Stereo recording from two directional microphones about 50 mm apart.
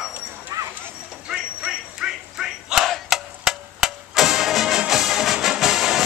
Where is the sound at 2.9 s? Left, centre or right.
Centre.